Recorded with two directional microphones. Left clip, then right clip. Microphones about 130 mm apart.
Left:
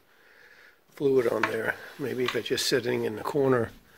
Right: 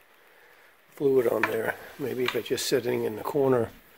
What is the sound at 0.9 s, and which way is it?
Speech, 20° right (ahead or behind).